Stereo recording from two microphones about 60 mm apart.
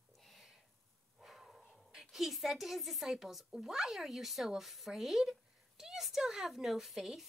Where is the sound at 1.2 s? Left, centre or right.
Centre.